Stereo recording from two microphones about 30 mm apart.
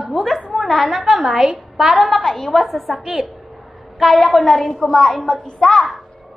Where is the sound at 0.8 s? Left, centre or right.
Centre.